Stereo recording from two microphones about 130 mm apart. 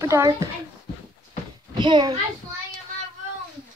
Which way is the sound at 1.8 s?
35° right (ahead or behind).